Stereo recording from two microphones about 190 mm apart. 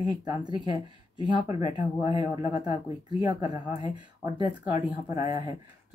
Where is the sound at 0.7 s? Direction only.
30° left (ahead or behind).